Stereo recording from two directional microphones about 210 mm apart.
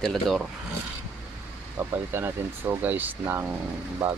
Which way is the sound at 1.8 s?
10° right (ahead or behind).